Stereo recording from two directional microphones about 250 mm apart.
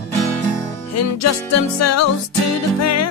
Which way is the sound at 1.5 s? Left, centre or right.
Left.